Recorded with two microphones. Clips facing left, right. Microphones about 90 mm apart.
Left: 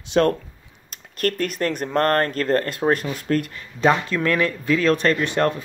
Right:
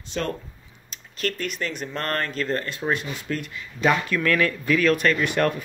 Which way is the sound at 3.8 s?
25° left (ahead or behind).